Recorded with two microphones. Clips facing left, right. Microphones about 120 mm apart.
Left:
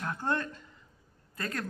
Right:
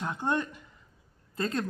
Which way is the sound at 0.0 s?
20° right (ahead or behind).